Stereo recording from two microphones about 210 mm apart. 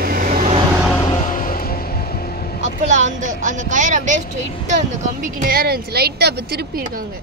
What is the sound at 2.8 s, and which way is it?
Speech, 35° right (ahead or behind).